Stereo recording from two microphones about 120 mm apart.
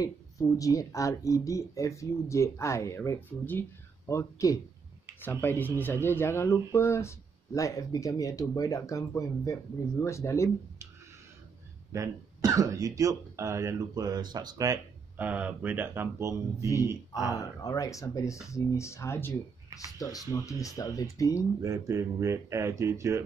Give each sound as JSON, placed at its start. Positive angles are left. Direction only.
{"t": 0.0, "sound": "speech", "side_deg": 30}
{"t": 11.9, "sound": "speech", "side_deg": -30}
{"t": 15.1, "sound": "speech", "side_deg": -10}
{"t": 17.3, "sound": "speech", "side_deg": 30}
{"t": 21.5, "sound": "speech", "side_deg": -30}